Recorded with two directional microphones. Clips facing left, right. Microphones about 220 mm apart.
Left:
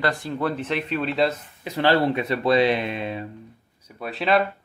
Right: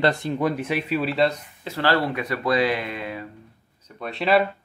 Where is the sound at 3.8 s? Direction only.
5° left (ahead or behind).